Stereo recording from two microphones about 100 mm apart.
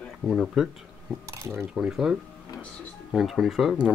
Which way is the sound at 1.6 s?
5° right (ahead or behind).